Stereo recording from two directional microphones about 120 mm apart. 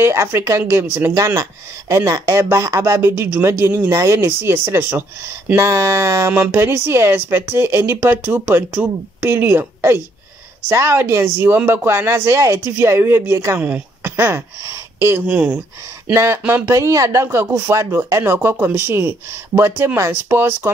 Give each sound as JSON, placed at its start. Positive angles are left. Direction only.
{"t": 0.0, "sound": "speech", "side_deg": -20}